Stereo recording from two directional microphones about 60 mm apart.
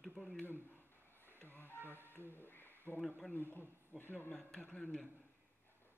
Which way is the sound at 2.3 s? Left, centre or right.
Left.